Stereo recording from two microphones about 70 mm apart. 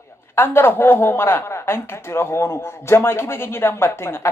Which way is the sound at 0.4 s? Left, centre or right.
Left.